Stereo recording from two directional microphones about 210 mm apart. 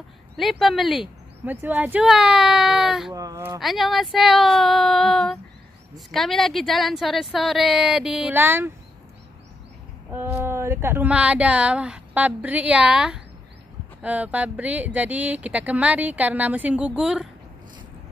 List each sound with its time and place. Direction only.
0.4 s a woman's voice: centre (ahead or behind)
3.1 s speech: 15° right (ahead or behind)
3.5 s a woman's voice: centre (ahead or behind)
10.1 s speech: 10° right (ahead or behind)